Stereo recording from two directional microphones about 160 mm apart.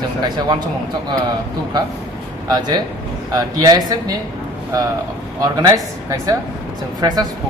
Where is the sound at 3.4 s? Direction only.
25° right (ahead or behind).